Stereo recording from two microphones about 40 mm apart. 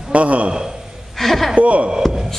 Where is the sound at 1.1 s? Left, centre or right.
Centre.